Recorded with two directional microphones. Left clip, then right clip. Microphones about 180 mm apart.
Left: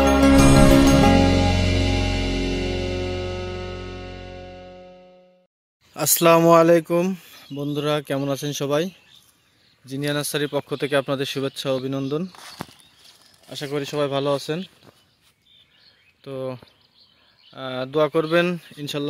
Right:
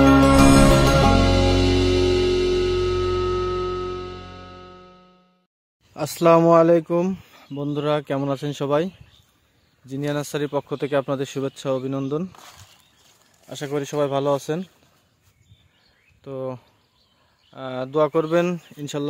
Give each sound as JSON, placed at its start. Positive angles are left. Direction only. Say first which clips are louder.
{"t": 0.0, "sound": "music", "louder": "right 1 dB", "side_deg": 0}
{"t": 5.9, "sound": "speech", "louder": "even", "side_deg": 0}
{"t": 12.3, "sound": "speech", "louder": "left 3 dB", "side_deg": 20}
{"t": 13.5, "sound": "speech", "louder": "right 1 dB", "side_deg": -15}
{"t": 16.3, "sound": "speech", "louder": "even", "side_deg": 0}